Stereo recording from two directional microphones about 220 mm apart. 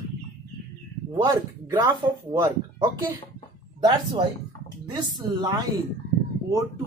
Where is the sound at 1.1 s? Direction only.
20° right (ahead or behind).